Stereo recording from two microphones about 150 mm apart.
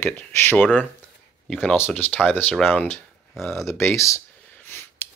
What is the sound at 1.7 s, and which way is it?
Speech, 15° left (ahead or behind).